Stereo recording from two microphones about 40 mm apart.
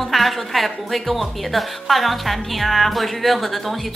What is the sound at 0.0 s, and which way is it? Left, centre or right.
A woman's voice, centre.